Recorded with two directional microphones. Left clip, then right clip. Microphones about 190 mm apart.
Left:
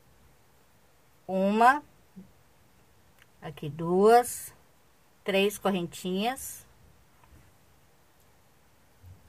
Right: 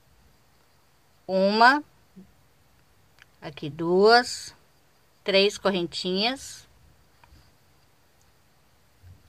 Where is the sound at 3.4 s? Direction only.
15° right (ahead or behind).